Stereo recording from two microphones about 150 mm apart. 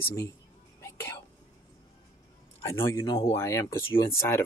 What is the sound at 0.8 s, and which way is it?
Whispering, 15° left (ahead or behind).